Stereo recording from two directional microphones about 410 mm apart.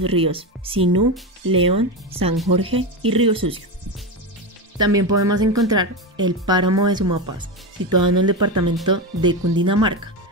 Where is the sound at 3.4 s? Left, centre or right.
Right.